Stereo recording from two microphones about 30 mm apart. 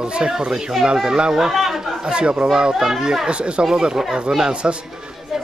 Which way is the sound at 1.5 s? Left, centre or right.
Centre.